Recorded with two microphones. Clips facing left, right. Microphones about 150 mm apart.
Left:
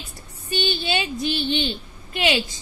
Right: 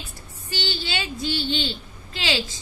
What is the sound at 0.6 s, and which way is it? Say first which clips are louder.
Speech: left 5 dB; 15° left (ahead or behind).